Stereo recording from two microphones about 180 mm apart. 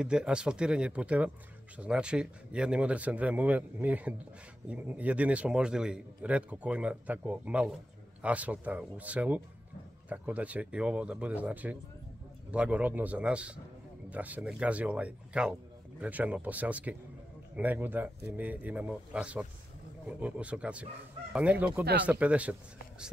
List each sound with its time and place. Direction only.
0.0 s a man's voice: 5° right (ahead or behind)